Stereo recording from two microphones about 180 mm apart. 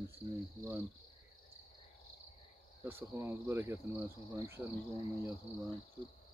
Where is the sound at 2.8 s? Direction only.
15° right (ahead or behind).